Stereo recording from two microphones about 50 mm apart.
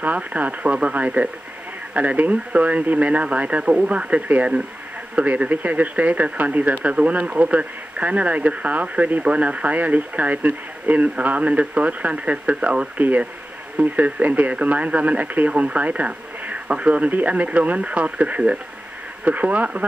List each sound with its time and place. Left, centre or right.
0.0 s speech: right
12.9 s speech: right